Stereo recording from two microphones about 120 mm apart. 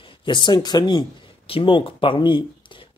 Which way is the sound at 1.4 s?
50° left (ahead or behind).